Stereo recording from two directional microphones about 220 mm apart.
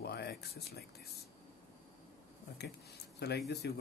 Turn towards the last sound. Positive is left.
turn(degrees=50)  # may be behind; listen again after turning